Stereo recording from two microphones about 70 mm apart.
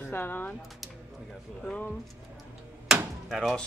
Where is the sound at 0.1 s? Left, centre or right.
Left.